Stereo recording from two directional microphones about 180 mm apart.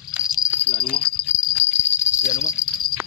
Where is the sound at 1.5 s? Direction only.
10° left (ahead or behind).